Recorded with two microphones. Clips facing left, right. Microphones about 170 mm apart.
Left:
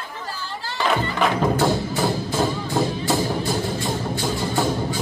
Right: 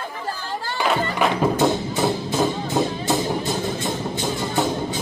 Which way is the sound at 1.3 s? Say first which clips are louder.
Right 1 dB; 20° right (ahead or behind).